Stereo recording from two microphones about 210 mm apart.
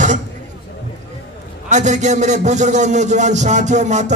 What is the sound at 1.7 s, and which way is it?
A man's voice, 35° right (ahead or behind).